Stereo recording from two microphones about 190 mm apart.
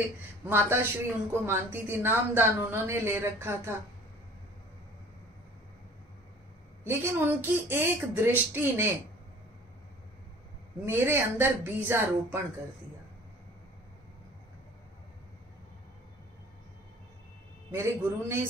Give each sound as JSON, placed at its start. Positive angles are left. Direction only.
{"t": 0.5, "sound": "a woman's voice", "side_deg": -10}
{"t": 6.8, "sound": "a woman's voice", "side_deg": -10}
{"t": 10.9, "sound": "a woman's voice", "side_deg": -10}
{"t": 17.6, "sound": "a woman's voice", "side_deg": -15}